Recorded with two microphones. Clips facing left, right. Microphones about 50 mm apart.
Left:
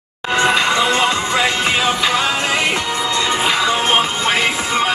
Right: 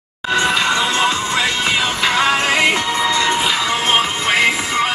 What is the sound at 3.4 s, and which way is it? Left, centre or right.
Music, left.